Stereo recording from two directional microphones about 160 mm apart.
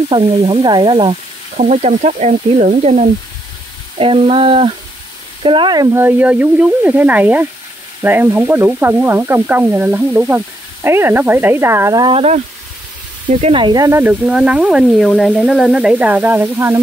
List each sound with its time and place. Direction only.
0.1 s stir: 35° right (ahead or behind)
1.6 s speech: 45° right (ahead or behind)
4.0 s stir: 35° right (ahead or behind)
5.4 s frying: 30° right (ahead or behind)
12.0 s stir: 35° right (ahead or behind)
13.4 s speech: 30° right (ahead or behind); by 14.1 s 15° right (ahead or behind)
14.2 s frying: 5° right (ahead or behind)